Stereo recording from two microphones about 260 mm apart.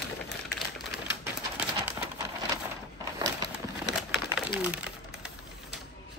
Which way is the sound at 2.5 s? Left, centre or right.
Centre.